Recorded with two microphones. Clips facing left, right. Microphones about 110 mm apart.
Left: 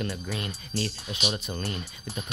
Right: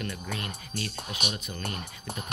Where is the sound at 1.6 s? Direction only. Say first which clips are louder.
Left 1 dB; 55° right (ahead or behind).